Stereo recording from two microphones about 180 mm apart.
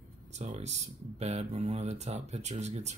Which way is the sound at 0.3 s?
40° right (ahead or behind).